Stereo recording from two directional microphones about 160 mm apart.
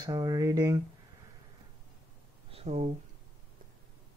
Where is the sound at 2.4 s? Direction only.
40° right (ahead or behind).